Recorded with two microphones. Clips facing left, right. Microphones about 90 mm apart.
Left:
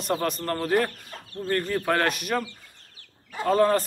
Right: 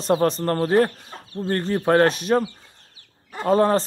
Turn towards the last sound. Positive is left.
turn(degrees=-25)  # may be behind; listen again after turning